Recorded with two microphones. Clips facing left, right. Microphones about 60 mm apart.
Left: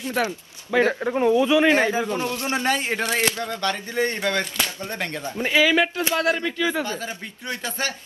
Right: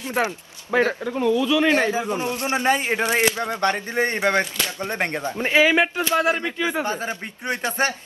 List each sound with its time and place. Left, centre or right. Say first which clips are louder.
0.1 s speech: right 2 dB; right
0.8 s speech: left 2 dB; left
1.6 s speech: left 1 dB; centre
2.0 s speech: right 1 dB; right